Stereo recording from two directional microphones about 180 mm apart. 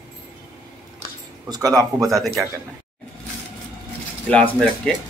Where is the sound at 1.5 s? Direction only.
20° right (ahead or behind).